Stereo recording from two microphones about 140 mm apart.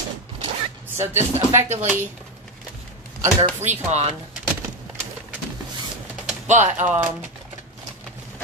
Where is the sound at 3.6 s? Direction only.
55° right (ahead or behind).